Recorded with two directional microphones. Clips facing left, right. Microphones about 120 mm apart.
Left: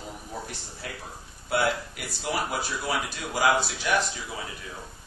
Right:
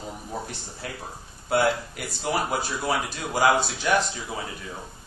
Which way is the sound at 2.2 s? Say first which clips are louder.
Right 3 dB; 45° right (ahead or behind).